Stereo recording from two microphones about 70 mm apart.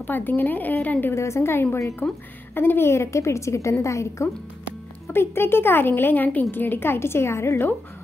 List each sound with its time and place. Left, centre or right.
0.0 s speech: left
1.1 s a woman's voice: left